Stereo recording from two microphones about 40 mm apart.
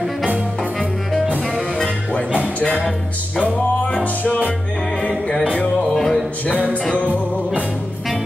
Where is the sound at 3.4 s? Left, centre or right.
Left.